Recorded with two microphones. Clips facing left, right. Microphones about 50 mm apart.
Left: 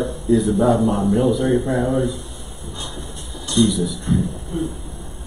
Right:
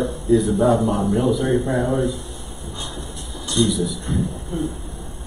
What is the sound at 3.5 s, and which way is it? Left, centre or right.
Speech, centre.